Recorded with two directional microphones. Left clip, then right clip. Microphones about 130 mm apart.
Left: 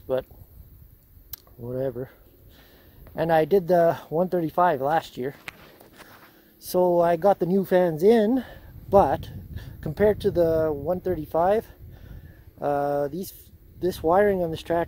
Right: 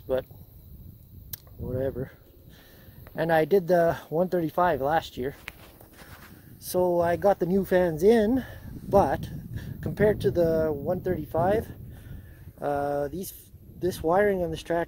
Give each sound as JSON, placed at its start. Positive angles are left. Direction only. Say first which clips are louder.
{"t": 0.1, "sound": "speech", "louder": "left 1 dB", "side_deg": 15}
{"t": 1.3, "sound": "a sound", "louder": "left 1 dB", "side_deg": 15}
{"t": 3.2, "sound": "speech", "louder": "left 2 dB", "side_deg": 15}
{"t": 6.6, "sound": "speech", "louder": "left 4 dB", "side_deg": 40}